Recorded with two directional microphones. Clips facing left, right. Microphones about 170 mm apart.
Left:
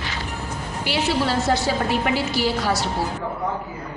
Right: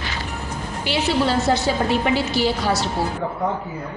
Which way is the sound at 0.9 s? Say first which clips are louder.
Right 2 dB; 25° right (ahead or behind).